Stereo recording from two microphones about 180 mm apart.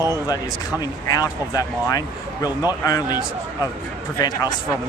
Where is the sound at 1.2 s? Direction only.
20° left (ahead or behind).